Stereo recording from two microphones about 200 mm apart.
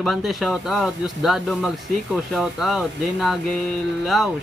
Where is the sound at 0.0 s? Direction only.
Centre (ahead or behind).